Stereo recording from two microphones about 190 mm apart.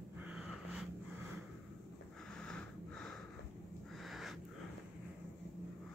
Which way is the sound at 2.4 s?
5° left (ahead or behind).